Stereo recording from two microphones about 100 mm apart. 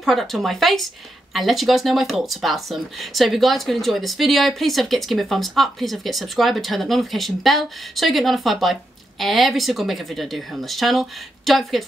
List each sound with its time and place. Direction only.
0.0 s speech: centre (ahead or behind)